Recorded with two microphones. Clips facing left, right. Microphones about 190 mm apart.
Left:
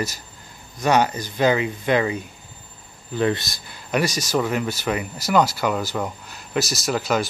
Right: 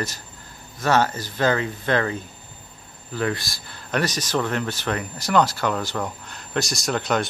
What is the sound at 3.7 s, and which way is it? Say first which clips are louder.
Speech: left 2 dB; 10° left (ahead or behind).